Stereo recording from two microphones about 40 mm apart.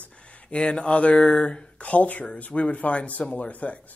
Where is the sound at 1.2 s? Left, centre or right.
Left.